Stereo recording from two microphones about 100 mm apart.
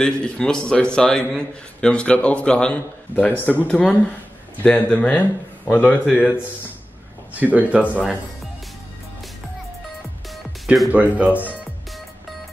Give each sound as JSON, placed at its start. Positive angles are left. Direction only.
{"t": 0.0, "sound": "a man's voice", "side_deg": 10}
{"t": 7.3, "sound": "speech", "side_deg": -15}
{"t": 10.9, "sound": "speech", "side_deg": -15}